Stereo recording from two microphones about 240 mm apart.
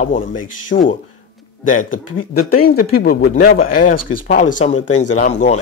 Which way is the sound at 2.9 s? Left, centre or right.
Left.